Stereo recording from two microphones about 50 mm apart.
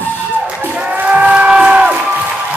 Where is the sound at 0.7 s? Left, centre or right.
Right.